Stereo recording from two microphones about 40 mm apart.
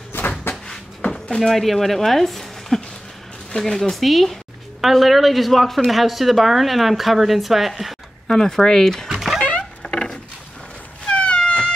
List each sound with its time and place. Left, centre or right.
0.2 s cupboard open or close: left
1.1 s a sound: centre
1.5 s a woman's voice: centre
8.3 s speech: centre
9.1 s music: centre
9.4 s a sound: left
11.1 s cat: left